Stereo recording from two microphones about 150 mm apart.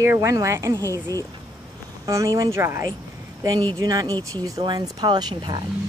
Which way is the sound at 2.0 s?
20° right (ahead or behind).